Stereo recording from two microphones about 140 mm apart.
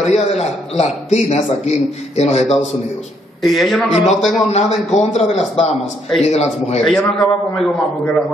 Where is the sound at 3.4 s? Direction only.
Centre (ahead or behind).